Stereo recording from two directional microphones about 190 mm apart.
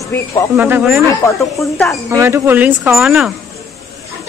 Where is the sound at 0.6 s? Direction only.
10° right (ahead or behind).